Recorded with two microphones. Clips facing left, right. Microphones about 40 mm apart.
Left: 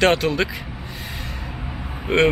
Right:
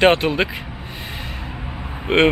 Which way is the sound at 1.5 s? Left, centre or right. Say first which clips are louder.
Right 1 dB; centre.